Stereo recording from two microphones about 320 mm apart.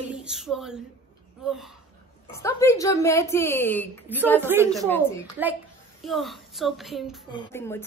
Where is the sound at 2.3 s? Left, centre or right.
Centre.